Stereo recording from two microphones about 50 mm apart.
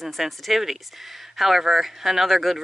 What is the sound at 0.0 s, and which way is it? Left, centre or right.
Speech, centre.